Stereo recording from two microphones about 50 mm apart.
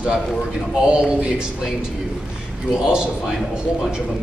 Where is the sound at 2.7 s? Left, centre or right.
Centre.